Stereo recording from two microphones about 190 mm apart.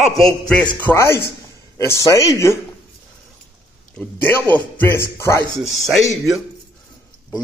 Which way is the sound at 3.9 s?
10° left (ahead or behind).